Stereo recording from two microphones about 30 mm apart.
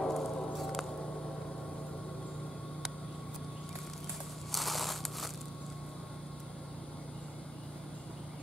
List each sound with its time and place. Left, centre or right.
0.0 s patter: centre
4.5 s crushing: centre